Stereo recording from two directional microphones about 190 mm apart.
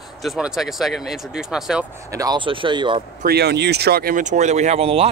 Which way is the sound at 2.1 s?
20° right (ahead or behind).